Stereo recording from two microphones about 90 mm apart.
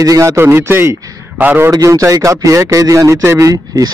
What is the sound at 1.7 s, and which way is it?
A man's voice, 40° right (ahead or behind).